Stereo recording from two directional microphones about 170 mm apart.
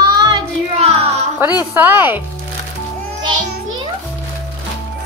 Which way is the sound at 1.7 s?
10° right (ahead or behind).